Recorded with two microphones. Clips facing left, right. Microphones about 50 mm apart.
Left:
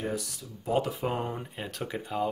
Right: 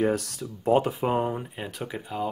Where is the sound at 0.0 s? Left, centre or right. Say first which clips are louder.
Right 8 dB; right.